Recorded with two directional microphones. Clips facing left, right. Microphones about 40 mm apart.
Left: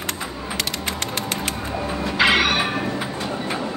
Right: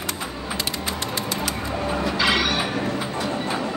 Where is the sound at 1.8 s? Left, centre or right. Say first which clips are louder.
Right 2 dB; centre.